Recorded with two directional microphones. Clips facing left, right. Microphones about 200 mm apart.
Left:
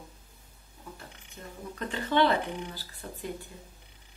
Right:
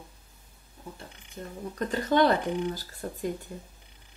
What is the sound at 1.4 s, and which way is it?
Speech, 35° right (ahead or behind).